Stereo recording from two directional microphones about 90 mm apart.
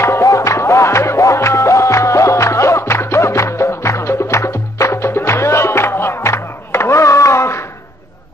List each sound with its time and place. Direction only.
0.0 s music: 35° left (ahead or behind)